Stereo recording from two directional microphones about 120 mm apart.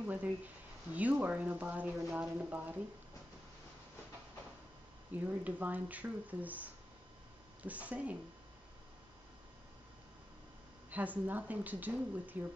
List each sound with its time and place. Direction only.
0.0 s speech: 15° right (ahead or behind)
5.1 s speech: 15° right (ahead or behind)
10.9 s speech: 15° right (ahead or behind)